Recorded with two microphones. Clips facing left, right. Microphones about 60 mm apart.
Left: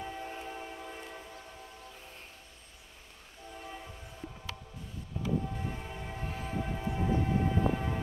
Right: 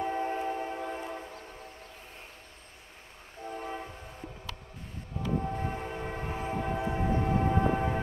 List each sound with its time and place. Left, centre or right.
0.0 s train: right
3.4 s train: right
5.2 s train: right
5.6 s train: right